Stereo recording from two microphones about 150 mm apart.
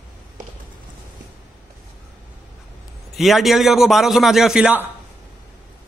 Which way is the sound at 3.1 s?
Centre (ahead or behind).